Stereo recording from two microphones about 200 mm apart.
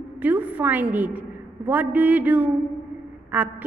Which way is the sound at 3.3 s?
10° right (ahead or behind).